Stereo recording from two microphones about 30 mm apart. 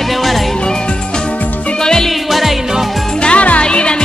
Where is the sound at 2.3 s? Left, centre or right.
Centre.